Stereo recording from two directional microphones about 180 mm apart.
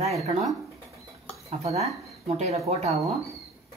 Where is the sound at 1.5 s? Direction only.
35° right (ahead or behind).